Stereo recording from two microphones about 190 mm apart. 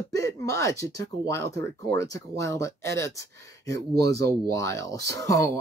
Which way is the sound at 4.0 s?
15° left (ahead or behind).